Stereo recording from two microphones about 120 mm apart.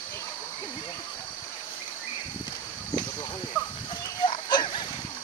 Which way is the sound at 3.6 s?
10° left (ahead or behind).